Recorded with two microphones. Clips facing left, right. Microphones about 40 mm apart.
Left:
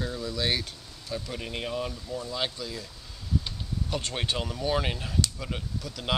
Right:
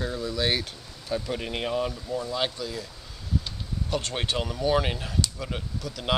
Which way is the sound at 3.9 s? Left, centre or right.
Centre.